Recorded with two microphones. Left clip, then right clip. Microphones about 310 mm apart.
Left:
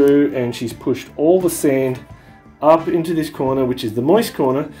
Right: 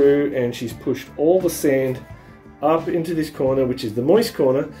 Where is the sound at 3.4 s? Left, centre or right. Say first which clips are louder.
Even; left.